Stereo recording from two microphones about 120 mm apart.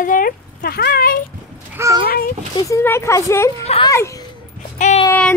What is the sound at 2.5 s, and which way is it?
Speech, 25° left (ahead or behind).